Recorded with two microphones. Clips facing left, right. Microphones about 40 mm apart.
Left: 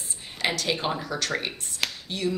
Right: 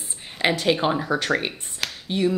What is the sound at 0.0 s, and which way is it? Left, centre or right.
Speech, centre.